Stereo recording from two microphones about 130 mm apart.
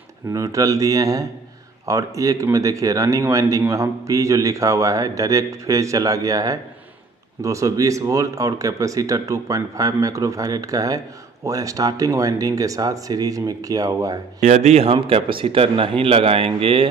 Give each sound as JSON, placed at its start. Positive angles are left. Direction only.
{"t": 0.3, "sound": "speech", "side_deg": -25}
{"t": 14.4, "sound": "a man's voice", "side_deg": -65}